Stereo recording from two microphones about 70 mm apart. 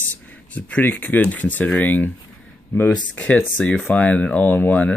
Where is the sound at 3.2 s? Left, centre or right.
Centre.